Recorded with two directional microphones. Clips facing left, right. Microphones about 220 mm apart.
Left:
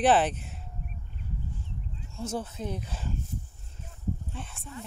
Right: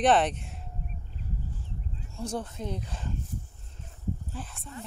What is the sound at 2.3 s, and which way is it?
Speech, 5° left (ahead or behind).